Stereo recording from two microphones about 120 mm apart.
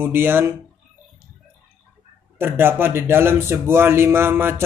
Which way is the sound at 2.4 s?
20° right (ahead or behind).